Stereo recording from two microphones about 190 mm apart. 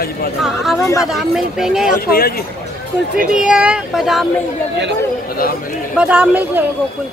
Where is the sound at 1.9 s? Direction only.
50° left (ahead or behind).